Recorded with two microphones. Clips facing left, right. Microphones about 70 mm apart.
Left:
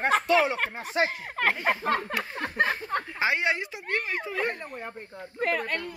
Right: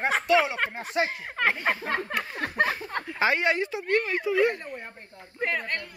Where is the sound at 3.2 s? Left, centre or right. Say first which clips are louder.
Right 4 dB; centre.